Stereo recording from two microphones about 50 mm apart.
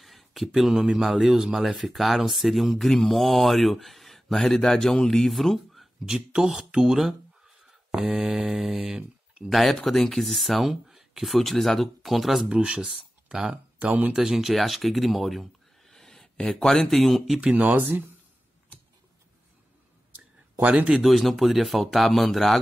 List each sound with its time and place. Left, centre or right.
0.0 s a sound: centre
0.6 s speech: centre
6.0 s speech: centre
9.5 s speech: centre
12.4 s speech: centre
12.8 s speech: centre
13.7 s speech: right
14.1 s speech: centre
17.7 s speech: right
20.6 s speech: right
20.9 s speech: centre